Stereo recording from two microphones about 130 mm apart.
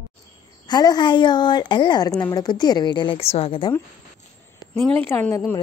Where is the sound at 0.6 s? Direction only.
30° left (ahead or behind).